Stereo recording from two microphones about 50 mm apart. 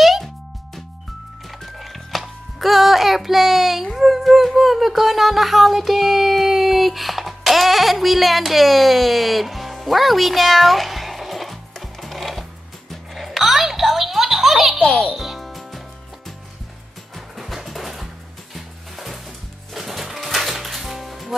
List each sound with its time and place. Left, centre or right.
0.0 s music: centre
1.6 s music: centre
14.8 s a child's voice: left
15.1 s music: centre
17.1 s music: centre